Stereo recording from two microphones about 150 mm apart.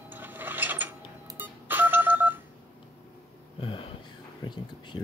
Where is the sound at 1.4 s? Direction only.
10° right (ahead or behind).